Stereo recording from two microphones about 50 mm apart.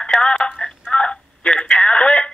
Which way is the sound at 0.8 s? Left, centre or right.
Left.